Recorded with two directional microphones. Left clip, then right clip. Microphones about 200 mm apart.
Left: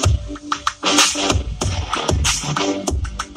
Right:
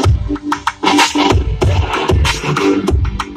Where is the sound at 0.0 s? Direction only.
25° left (ahead or behind).